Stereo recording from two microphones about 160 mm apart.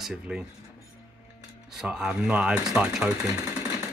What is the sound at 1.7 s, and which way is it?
Speech, 5° right (ahead or behind).